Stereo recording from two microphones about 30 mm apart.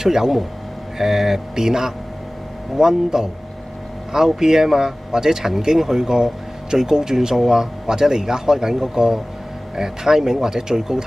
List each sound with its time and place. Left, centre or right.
0.0 s speech: centre
4.1 s speech: centre